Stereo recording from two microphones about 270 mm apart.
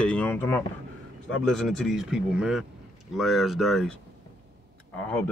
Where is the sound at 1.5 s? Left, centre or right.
Centre.